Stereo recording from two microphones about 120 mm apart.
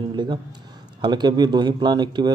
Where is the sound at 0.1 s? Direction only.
40° right (ahead or behind).